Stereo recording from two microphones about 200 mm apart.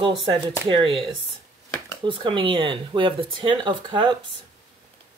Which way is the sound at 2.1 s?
25° right (ahead or behind).